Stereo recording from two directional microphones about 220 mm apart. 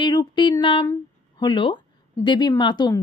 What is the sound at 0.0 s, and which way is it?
Speech, 20° left (ahead or behind).